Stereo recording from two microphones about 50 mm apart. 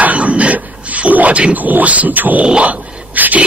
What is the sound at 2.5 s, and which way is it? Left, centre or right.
Speech, right.